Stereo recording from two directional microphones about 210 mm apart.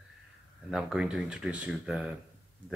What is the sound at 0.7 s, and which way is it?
Speech, 5° right (ahead or behind).